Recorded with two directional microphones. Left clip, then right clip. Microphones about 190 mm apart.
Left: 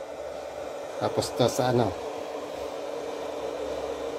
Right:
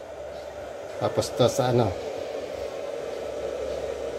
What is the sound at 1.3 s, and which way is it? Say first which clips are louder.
Speech: right 2 dB; 5° left (ahead or behind).